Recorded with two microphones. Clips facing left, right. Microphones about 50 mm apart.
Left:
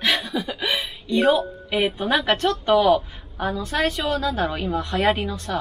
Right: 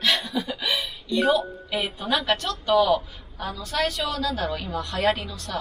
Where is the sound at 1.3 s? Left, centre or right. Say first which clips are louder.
Left 3 dB; left.